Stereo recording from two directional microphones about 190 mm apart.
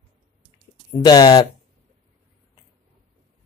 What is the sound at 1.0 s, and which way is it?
Speech, 20° left (ahead or behind).